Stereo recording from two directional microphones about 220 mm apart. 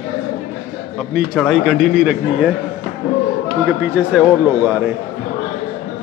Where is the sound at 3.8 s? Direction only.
5° right (ahead or behind).